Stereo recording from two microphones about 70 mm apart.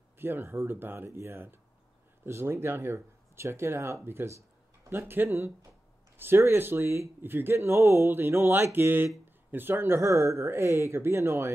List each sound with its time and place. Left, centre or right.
0.2 s speech: right